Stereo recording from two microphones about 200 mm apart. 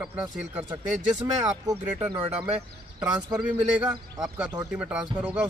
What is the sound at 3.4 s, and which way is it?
Speech, 5° right (ahead or behind).